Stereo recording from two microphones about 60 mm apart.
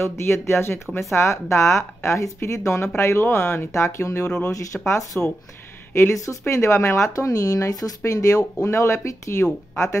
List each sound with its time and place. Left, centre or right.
0.0 s a woman's voice: left
7.2 s speech: left
8.0 s a woman's voice: left